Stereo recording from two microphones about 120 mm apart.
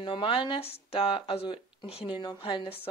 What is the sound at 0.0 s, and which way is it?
Speech, 40° left (ahead or behind).